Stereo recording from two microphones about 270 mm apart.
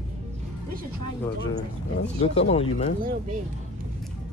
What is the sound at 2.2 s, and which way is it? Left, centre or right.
Speech, left.